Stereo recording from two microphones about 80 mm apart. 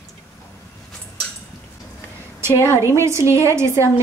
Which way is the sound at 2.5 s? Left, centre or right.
Left.